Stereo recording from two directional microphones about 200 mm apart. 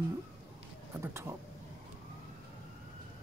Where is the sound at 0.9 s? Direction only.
15° right (ahead or behind).